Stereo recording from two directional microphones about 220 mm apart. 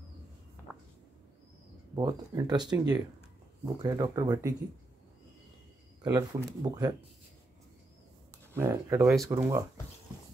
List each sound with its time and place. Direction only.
2.0 s speech: 20° right (ahead or behind)
3.8 s speech: 15° right (ahead or behind)
6.0 s speech: 20° right (ahead or behind)
8.5 s speech: 10° right (ahead or behind)
9.0 s speech: centre (ahead or behind)
9.3 s speech: 10° right (ahead or behind)